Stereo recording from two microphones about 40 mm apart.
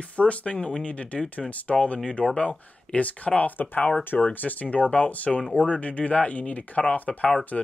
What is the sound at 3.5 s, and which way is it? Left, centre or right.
Speech, left.